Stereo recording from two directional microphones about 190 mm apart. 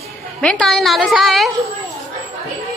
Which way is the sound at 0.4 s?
5° left (ahead or behind).